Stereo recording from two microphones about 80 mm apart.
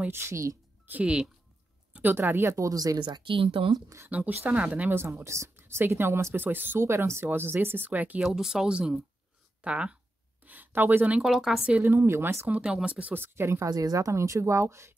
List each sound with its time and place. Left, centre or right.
0.1 s speech: right
0.8 s speech: centre
2.0 s speech: right
3.0 s speech: right
4.1 s a woman's voice: right
5.0 s a woman's voice: right
8.2 s speech: centre
10.4 s a sound: right
11.2 s speech: centre
11.7 s speech: right
12.4 s a woman's voice: centre; by 13.7 s right
13.7 s speech: right